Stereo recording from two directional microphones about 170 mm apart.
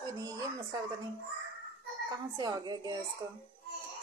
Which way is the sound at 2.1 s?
20° right (ahead or behind).